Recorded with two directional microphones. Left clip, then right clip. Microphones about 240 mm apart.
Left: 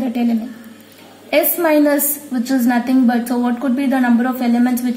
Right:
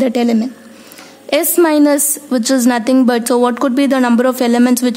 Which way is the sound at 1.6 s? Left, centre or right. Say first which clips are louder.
Right 4 dB; right.